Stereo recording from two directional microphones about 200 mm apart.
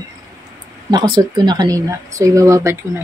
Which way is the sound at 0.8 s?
20° right (ahead or behind).